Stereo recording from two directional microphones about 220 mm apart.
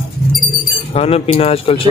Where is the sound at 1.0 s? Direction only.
25° left (ahead or behind).